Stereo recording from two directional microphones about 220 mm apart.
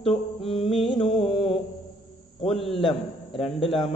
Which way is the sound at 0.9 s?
25° left (ahead or behind).